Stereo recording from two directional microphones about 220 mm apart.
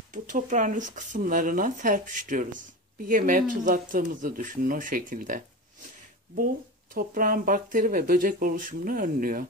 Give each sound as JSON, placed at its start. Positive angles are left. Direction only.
{"t": 0.1, "sound": "speech", "side_deg": -35}